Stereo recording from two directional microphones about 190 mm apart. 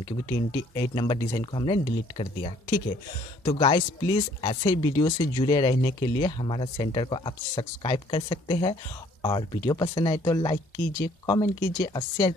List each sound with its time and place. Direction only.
0.0 s speech: 20° left (ahead or behind)
3.4 s speech: 25° left (ahead or behind)